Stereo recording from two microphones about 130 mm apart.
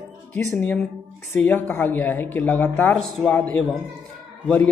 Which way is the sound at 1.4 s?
15° left (ahead or behind).